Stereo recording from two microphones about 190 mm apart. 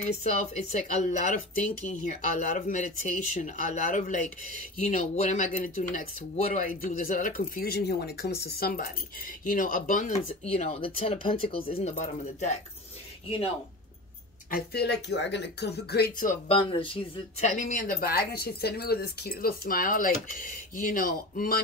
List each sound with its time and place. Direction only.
0.0 s speech: 40° left (ahead or behind)
14.5 s speech: 60° left (ahead or behind)
16.5 s speech: 25° left (ahead or behind)
17.6 s speech: 40° left (ahead or behind)